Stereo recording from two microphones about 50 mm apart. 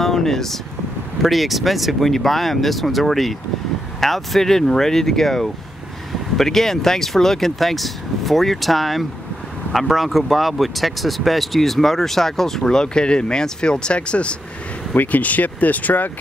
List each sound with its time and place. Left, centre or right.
0.0 s a sound: centre
1.2 s speech: centre; by 14.3 s left
15.0 s speech: left